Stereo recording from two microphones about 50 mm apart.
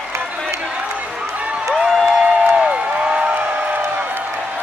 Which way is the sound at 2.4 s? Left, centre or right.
Right.